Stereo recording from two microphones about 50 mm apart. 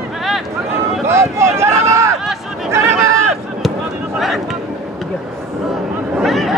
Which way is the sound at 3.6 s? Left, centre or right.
Centre.